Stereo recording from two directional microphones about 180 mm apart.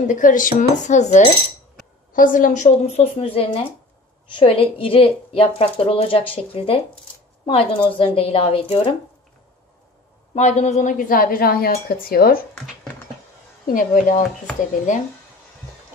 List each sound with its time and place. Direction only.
0.0 s a woman's voice: 45° left (ahead or behind)
10.3 s a woman's voice: 40° left (ahead or behind); by 12.4 s 55° left (ahead or behind)
13.7 s a woman's voice: 50° left (ahead or behind)